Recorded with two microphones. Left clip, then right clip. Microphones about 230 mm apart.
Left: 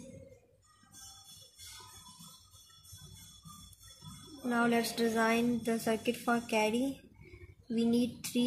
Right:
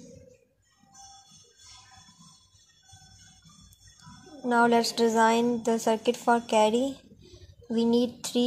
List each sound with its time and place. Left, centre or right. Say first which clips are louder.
4.5 s a woman's voice: right 9 dB; right
7.7 s a woman's voice: right 7 dB; right